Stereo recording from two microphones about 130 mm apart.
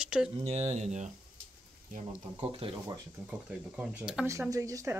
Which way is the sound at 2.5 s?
45° right (ahead or behind).